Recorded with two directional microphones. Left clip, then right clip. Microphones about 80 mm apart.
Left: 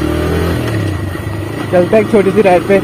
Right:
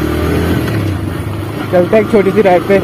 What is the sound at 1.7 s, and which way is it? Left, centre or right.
Speech, centre.